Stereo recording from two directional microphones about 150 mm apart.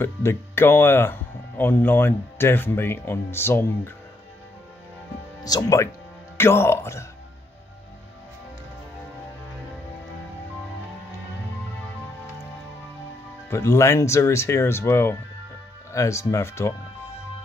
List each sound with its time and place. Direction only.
0.0 s speech: 15° left (ahead or behind)
5.4 s speech: 25° left (ahead or behind)
13.5 s speech: 20° left (ahead or behind)